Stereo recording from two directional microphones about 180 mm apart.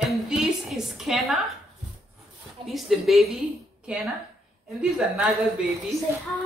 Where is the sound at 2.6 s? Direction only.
Centre (ahead or behind).